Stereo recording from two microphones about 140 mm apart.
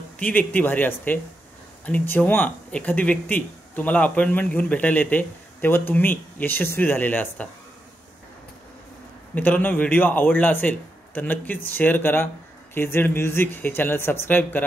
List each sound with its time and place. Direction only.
0.2 s speech: 10° left (ahead or behind)
9.3 s speech: 15° left (ahead or behind)